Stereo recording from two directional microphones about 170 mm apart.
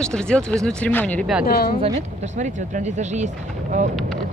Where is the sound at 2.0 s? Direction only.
45° right (ahead or behind).